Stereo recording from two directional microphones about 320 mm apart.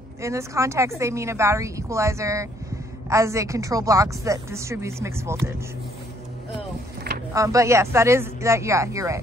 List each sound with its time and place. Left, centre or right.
0.2 s speech: centre
7.3 s speech: centre